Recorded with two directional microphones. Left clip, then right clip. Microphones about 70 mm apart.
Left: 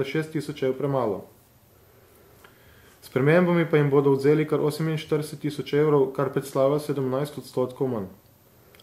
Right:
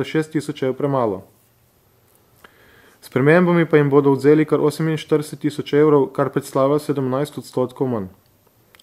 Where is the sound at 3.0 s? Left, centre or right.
Right.